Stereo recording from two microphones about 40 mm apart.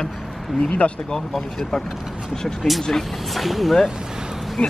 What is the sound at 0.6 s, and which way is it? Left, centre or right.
Speech, left.